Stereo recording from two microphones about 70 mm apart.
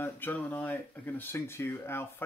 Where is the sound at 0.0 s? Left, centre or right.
Left.